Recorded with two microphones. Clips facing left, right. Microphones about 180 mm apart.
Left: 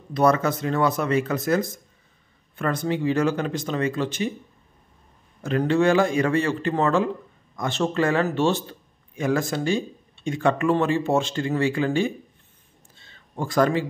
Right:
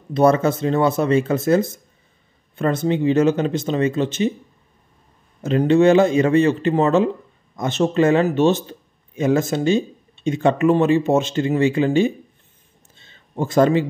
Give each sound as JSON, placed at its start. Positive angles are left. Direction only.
{"t": 0.1, "sound": "a man's voice", "side_deg": -25}
{"t": 5.4, "sound": "a man's voice", "side_deg": -20}
{"t": 12.9, "sound": "a sound", "side_deg": -20}